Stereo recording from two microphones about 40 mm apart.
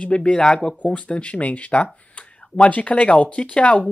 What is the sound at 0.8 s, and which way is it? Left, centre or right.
Speech, left.